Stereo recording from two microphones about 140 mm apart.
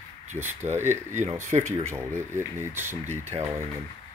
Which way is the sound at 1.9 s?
20° right (ahead or behind).